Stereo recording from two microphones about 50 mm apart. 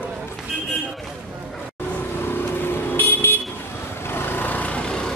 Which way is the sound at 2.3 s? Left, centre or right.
Left.